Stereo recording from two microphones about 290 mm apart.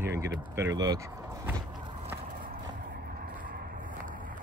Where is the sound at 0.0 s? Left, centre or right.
Centre.